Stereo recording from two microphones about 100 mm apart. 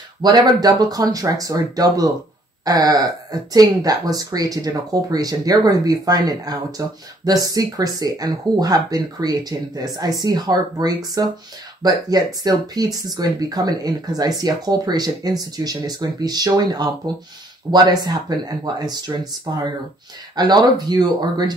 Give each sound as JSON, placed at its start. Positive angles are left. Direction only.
{"t": 0.2, "sound": "speech", "side_deg": -40}